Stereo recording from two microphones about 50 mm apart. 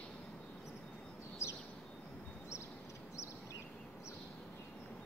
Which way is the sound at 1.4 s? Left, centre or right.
Left.